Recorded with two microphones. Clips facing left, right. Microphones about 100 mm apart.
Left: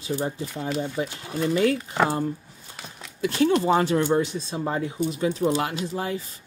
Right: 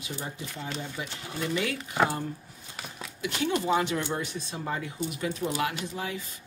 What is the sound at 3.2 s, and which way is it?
Speech, 35° left (ahead or behind).